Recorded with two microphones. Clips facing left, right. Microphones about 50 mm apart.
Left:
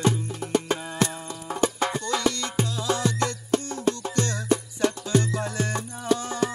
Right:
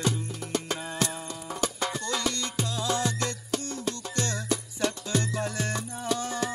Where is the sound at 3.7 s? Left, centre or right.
Left.